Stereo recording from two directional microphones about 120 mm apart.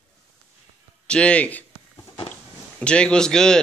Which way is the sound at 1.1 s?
10° left (ahead or behind).